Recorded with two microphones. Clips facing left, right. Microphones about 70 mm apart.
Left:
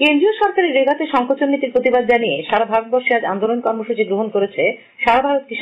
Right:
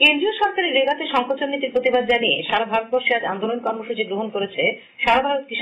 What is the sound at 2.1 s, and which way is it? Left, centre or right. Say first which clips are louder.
A woman's voice: left 5 dB; left.